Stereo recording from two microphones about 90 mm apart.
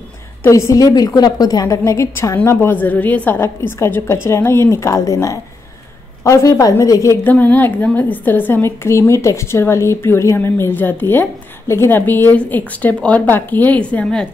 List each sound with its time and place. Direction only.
0.5 s a woman's voice: 35° left (ahead or behind)
0.9 s a woman's voice: 45° left (ahead or behind)
7.2 s a woman's voice: 20° left (ahead or behind)